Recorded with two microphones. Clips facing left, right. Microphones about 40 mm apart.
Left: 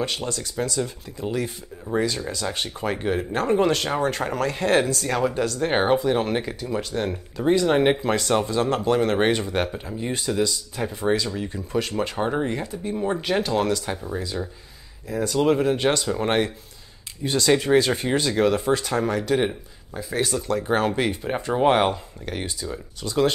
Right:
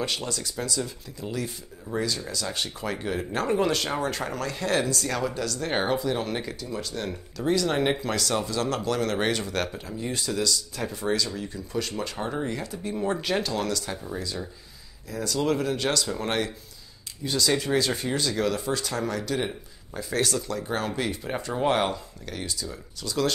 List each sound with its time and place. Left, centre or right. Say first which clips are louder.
0.0 s speech: left 3 dB; centre
12.8 s speech: left 2 dB; centre
15.0 s speech: left 5 dB; left
20.0 s speech: left 2 dB; centre
20.4 s speech: left 7 dB; left
21.2 s speech: left 6 dB; centre